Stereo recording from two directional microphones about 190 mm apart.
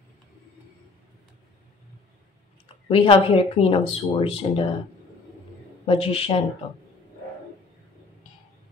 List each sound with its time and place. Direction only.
2.9 s speech: 25° left (ahead or behind)
5.9 s speech: 30° left (ahead or behind)